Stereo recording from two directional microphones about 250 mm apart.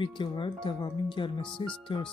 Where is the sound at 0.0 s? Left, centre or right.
Centre.